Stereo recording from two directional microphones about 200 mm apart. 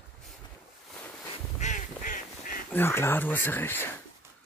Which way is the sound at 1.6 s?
40° left (ahead or behind).